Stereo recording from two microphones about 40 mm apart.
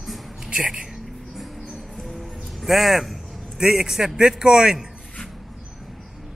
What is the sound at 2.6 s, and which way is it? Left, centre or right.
Speech, centre.